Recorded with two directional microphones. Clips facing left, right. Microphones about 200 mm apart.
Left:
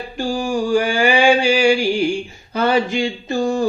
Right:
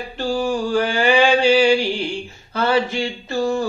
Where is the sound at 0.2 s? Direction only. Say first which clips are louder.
Left 1 dB; 10° left (ahead or behind).